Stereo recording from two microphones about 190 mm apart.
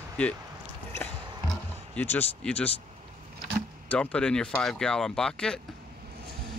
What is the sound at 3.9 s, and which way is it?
Speech, 5° left (ahead or behind).